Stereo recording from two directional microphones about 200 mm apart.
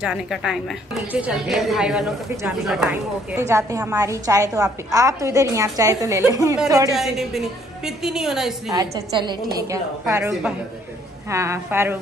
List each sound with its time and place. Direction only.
0.0 s a woman's voice: centre (ahead or behind); by 7.0 s 15° right (ahead or behind)
7.0 s a woman's voice: centre (ahead or behind)
8.7 s a woman's voice: 20° right (ahead or behind)